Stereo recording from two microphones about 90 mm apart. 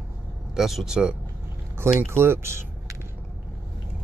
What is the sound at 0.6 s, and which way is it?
Speech, 5° right (ahead or behind).